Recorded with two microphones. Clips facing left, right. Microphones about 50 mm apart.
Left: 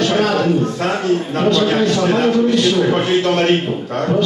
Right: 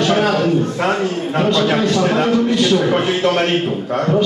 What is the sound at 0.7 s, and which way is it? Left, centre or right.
Speech, right.